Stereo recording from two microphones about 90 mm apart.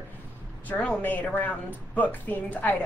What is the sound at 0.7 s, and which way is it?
A woman's voice, 15° left (ahead or behind).